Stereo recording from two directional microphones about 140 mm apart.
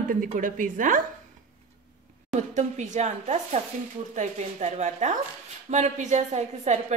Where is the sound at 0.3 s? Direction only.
70° right (ahead or behind).